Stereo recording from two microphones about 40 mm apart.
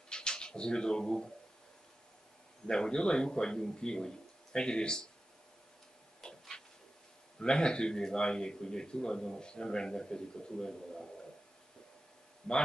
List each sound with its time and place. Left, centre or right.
0.1 s speech: left
2.6 s a man's voice: centre
6.2 s a sound: centre
7.3 s a man's voice: centre
12.4 s speech: centre